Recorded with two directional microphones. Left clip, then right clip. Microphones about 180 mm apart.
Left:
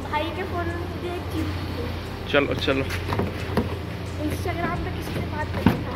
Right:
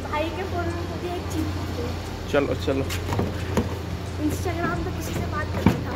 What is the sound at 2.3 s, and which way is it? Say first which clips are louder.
Speech: left 2 dB; 10° right (ahead or behind).